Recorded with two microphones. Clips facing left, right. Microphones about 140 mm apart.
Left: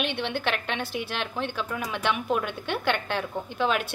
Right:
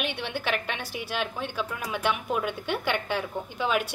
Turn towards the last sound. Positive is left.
turn(degrees=-10)  # may be behind; listen again after turning